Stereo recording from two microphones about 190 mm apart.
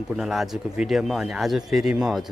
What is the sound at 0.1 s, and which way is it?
Speech, centre (ahead or behind).